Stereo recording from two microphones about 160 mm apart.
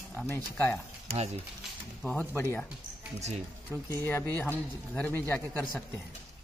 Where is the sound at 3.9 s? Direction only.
15° left (ahead or behind).